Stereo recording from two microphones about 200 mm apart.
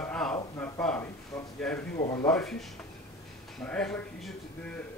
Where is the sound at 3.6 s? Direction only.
5° left (ahead or behind).